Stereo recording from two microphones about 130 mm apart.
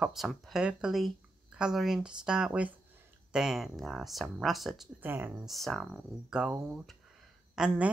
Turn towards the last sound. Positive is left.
turn(degrees=-10)  # may be behind; listen again after turning